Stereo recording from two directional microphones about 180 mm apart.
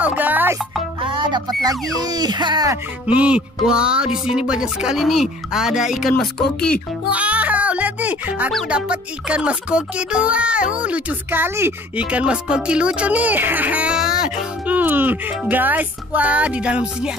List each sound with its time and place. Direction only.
0.0 s music: 10° right (ahead or behind)
1.0 s speech: 25° right (ahead or behind)
3.1 s speech: 5° right (ahead or behind)
7.1 s music: 10° right (ahead or behind)
8.5 s speech: 5° right (ahead or behind)